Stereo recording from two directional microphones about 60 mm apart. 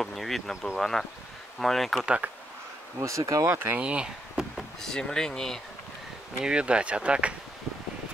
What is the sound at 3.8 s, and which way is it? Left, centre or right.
Speech, right.